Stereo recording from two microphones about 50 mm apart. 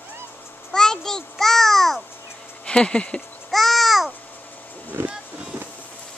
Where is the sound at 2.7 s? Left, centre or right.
Centre.